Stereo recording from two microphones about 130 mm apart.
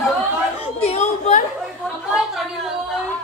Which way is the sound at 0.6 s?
55° left (ahead or behind).